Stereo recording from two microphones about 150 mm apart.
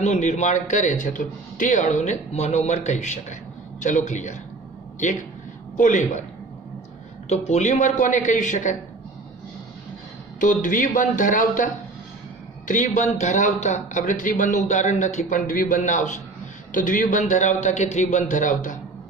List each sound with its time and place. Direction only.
0.0 s a man's voice: 50° left (ahead or behind)
5.8 s a man's voice: 55° left (ahead or behind)
7.2 s a man's voice: 45° left (ahead or behind)
10.4 s speech: 60° left (ahead or behind)